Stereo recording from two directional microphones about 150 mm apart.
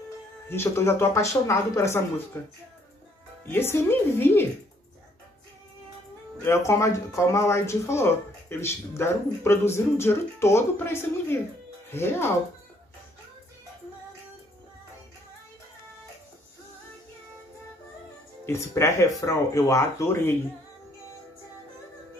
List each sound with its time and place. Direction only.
0.5 s speech: 15° left (ahead or behind)
3.4 s speech: 15° left (ahead or behind)
6.4 s speech: 20° left (ahead or behind)
18.4 s speech: 15° left (ahead or behind)